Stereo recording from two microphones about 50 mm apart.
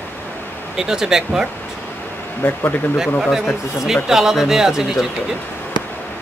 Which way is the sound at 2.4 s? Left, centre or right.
Left.